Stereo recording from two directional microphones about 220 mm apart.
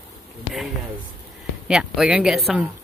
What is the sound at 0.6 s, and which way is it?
Speech, centre (ahead or behind).